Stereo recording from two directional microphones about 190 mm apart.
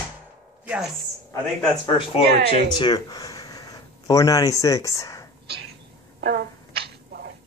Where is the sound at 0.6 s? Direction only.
5° right (ahead or behind).